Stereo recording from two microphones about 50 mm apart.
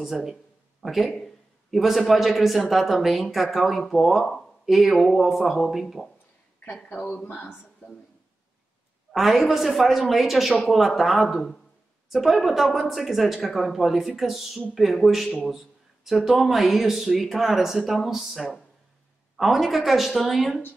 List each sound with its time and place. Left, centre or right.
0.0 s speech: centre
6.9 s speech: centre
7.2 s speech: left
9.1 s speech: centre
15.4 s a sound: centre
16.3 s speech: centre